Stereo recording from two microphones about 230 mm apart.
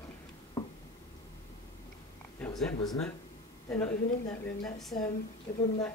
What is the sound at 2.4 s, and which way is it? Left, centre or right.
A woman's voice, centre.